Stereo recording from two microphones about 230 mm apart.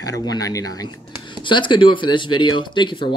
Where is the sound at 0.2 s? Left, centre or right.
Centre.